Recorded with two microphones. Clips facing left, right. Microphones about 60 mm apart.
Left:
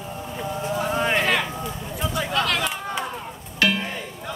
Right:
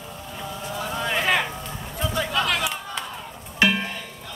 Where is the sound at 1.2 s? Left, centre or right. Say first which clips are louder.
Even; centre.